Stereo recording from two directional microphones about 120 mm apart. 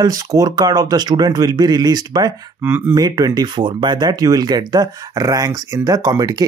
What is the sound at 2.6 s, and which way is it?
Speech, 20° right (ahead or behind).